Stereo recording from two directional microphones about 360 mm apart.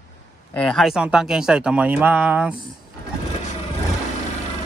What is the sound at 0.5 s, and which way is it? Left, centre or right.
Speech, centre.